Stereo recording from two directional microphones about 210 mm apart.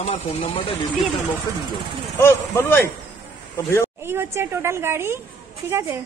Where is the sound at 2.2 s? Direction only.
10° left (ahead or behind).